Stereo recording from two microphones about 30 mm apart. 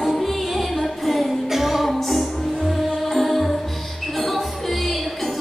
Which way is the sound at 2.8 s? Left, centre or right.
Centre.